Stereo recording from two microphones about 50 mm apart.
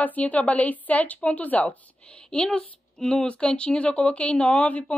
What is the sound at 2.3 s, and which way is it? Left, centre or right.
Speech, left.